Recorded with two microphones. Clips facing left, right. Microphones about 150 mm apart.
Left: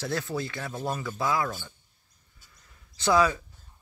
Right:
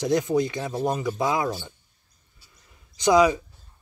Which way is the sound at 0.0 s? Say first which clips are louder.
Right 9 dB; 15° right (ahead or behind).